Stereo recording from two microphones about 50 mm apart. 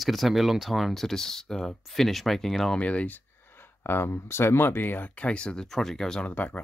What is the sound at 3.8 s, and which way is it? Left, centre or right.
Speech, left.